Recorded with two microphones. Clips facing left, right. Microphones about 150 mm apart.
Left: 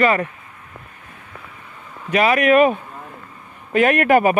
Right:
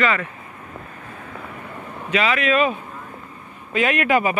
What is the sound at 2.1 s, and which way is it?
Speech, 45° left (ahead or behind).